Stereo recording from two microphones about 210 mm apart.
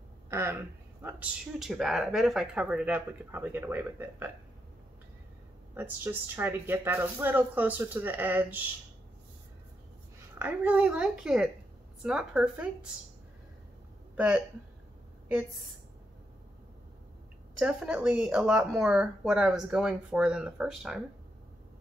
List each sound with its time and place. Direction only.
0.3 s speech: 10° right (ahead or behind)
5.8 s speech: 10° right (ahead or behind)
10.4 s speech: 5° right (ahead or behind)
14.1 s speech: 5° right (ahead or behind)
17.6 s speech: 5° right (ahead or behind)